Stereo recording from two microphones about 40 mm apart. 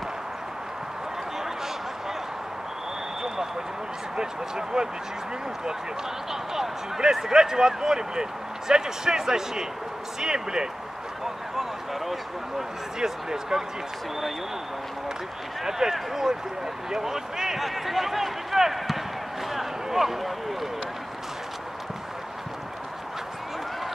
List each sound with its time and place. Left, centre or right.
4.2 s speech: centre
6.3 s speech: centre
11.5 s speech: centre
15.6 s speech: centre